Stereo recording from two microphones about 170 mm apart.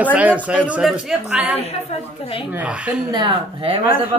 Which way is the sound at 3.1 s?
30° right (ahead or behind).